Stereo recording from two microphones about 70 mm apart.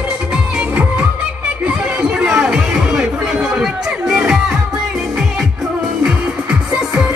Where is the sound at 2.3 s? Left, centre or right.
Centre.